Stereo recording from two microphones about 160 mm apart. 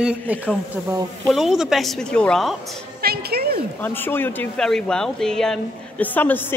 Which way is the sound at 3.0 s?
75° right (ahead or behind).